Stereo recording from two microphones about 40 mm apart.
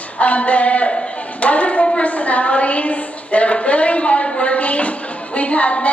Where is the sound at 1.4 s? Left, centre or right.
Left.